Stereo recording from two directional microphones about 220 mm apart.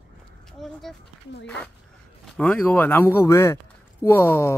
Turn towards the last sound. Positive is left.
turn(degrees=10)  # may be behind; listen again after turning